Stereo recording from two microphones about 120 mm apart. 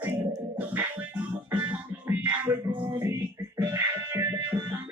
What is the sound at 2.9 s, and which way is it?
Music, 25° right (ahead or behind).